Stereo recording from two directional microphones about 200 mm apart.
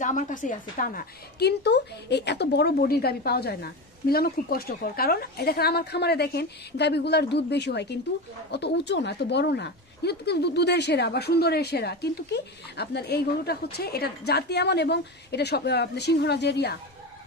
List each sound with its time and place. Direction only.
0.0 s a woman's voice: 40° left (ahead or behind); by 16.7 s 55° left (ahead or behind)